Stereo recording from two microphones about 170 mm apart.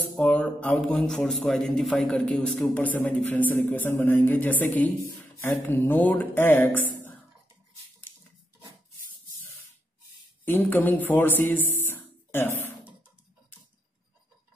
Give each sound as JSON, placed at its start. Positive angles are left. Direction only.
{"t": 0.1, "sound": "a man's voice", "side_deg": 5}
{"t": 10.4, "sound": "speech", "side_deg": 10}